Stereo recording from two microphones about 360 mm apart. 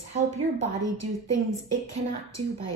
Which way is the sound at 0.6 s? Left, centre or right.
Right.